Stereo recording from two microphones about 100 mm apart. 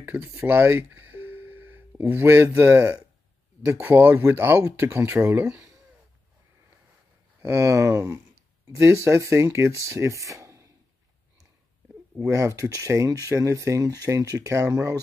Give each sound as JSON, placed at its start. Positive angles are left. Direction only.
{"t": 0.0, "sound": "speech", "side_deg": -20}
{"t": 7.4, "sound": "speech", "side_deg": -30}
{"t": 12.2, "sound": "speech", "side_deg": -30}